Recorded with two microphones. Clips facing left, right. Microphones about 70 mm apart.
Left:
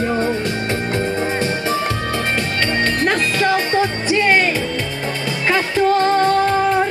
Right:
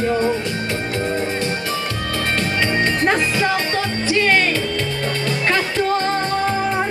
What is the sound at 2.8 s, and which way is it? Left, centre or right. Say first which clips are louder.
Music: even; centre.